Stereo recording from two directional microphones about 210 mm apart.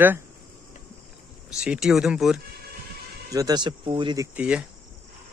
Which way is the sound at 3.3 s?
20° right (ahead or behind).